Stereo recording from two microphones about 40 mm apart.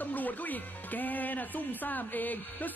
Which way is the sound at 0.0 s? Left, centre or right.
Left.